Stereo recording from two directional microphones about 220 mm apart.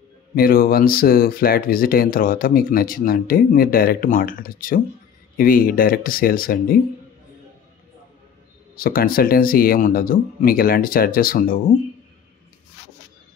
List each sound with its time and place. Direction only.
0.4 s speech: 40° left (ahead or behind)
8.7 s speech: 40° left (ahead or behind)